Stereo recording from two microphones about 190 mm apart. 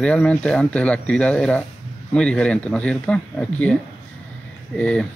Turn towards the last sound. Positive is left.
turn(degrees=5)  # may be behind; listen again after turning